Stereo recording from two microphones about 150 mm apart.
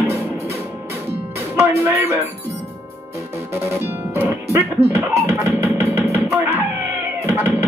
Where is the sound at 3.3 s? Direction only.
15° right (ahead or behind).